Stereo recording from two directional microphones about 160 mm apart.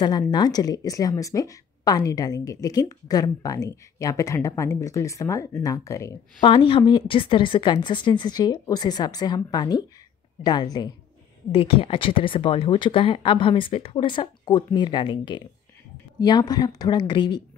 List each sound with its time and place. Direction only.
0.0 s a woman's voice: 25° left (ahead or behind)
6.4 s a woman's voice: 30° left (ahead or behind)